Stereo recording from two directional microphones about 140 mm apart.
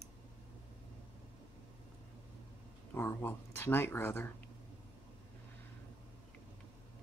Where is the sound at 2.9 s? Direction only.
15° left (ahead or behind).